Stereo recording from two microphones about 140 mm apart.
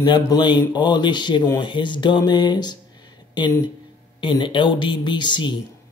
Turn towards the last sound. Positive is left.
turn(degrees=35)  # may be behind; listen again after turning